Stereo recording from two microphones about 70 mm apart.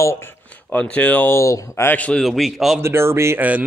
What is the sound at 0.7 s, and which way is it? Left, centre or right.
Speech, centre.